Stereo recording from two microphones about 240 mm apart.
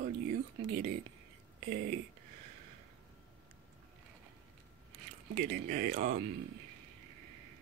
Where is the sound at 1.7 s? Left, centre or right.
Right.